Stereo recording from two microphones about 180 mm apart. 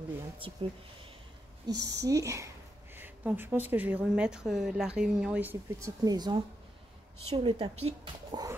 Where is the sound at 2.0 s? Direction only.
15° right (ahead or behind).